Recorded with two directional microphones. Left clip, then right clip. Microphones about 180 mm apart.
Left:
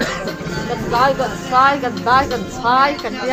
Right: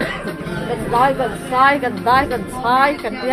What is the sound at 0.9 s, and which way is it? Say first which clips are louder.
Speech: even; 20° right (ahead or behind).